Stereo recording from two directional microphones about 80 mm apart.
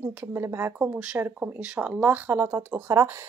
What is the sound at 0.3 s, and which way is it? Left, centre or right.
Speech, right.